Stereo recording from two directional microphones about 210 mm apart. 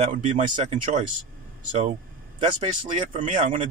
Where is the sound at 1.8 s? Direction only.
30° right (ahead or behind).